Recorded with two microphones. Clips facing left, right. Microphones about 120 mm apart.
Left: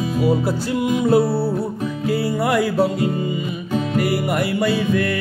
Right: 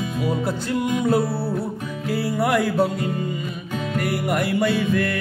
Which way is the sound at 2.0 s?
Centre (ahead or behind).